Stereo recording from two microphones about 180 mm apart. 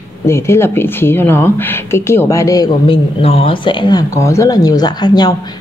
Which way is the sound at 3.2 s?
30° left (ahead or behind).